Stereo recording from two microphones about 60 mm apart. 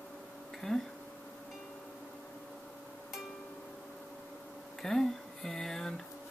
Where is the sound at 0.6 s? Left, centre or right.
Centre.